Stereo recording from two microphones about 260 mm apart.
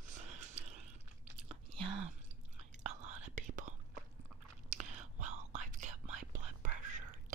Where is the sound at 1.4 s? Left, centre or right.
Right.